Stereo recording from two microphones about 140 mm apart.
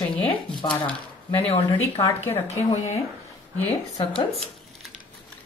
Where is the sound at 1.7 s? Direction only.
25° left (ahead or behind).